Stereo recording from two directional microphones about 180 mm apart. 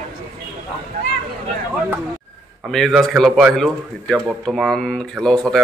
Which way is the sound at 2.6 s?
Centre (ahead or behind).